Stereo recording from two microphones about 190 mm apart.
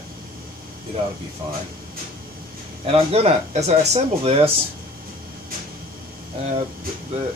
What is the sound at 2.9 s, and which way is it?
Speech, 30° right (ahead or behind).